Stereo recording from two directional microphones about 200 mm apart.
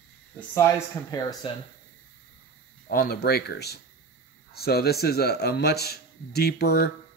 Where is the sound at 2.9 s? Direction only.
50° left (ahead or behind).